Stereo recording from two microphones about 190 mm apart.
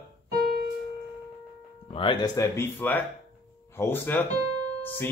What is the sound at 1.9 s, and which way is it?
Speech, 25° left (ahead or behind).